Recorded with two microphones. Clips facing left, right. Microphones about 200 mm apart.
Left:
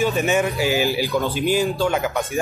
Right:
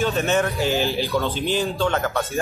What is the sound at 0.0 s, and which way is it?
Speech, 10° left (ahead or behind).